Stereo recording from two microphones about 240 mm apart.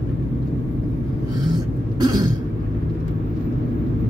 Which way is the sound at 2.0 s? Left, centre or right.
Centre.